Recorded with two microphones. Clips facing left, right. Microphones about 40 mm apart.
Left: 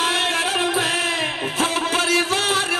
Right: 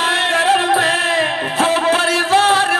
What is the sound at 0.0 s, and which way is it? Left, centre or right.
Music, right.